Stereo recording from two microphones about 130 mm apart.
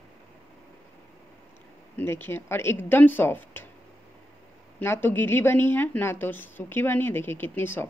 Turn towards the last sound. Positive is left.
turn(degrees=15)  # may be behind; listen again after turning